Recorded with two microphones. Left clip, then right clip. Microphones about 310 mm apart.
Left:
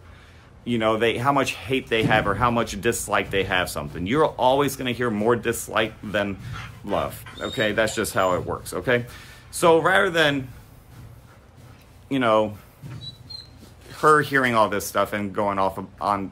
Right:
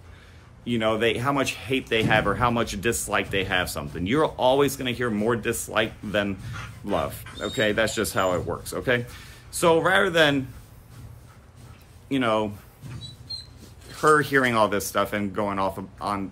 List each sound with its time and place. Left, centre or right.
0.7 s speech: centre
12.1 s speech: centre
14.0 s speech: centre